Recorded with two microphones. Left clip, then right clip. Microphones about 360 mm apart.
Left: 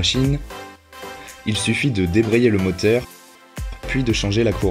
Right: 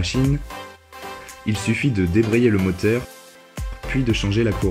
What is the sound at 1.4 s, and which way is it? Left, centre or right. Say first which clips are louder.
Speech: left 2 dB; centre.